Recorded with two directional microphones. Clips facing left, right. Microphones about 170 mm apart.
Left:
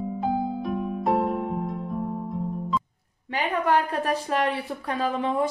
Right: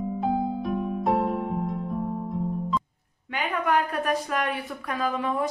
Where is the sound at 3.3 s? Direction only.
30° left (ahead or behind).